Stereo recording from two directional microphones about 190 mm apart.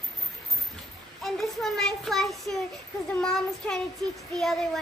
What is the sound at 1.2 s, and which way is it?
A child's voice, centre (ahead or behind).